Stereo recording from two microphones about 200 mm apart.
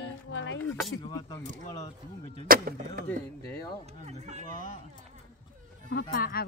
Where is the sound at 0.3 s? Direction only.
65° left (ahead or behind).